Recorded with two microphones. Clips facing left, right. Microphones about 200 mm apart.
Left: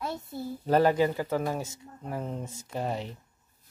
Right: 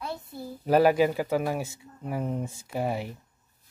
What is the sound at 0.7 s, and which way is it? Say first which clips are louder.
Speech: right 2 dB; 10° right (ahead or behind).